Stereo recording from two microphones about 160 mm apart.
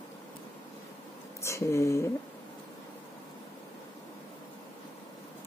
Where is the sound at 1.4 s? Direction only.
20° left (ahead or behind).